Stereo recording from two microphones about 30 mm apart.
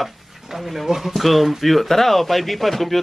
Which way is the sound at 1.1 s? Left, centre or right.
Centre.